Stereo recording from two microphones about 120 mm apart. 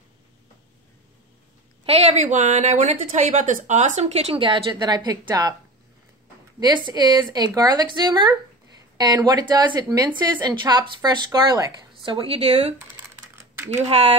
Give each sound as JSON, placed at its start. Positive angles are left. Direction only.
{"t": 1.9, "sound": "a woman's voice", "side_deg": -65}
{"t": 4.4, "sound": "speech", "side_deg": -40}
{"t": 6.6, "sound": "speech", "side_deg": -35}
{"t": 12.0, "sound": "speech", "side_deg": -45}
{"t": 13.1, "sound": "typing", "side_deg": -15}